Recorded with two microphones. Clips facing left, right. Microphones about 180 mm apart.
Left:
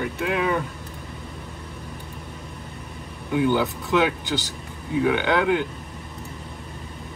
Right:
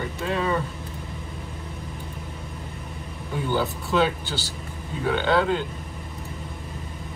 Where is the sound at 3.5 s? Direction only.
15° left (ahead or behind).